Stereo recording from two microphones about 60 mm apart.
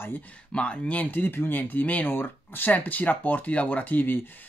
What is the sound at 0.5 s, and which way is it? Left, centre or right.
Speech, centre.